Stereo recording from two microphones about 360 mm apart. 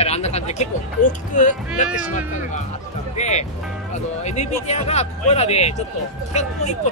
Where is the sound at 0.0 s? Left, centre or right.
Centre.